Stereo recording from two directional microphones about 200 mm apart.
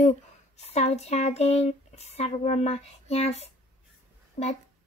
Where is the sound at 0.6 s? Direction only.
35° left (ahead or behind).